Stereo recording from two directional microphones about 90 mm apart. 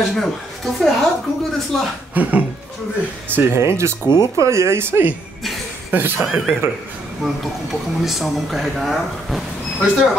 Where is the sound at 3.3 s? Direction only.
30° right (ahead or behind).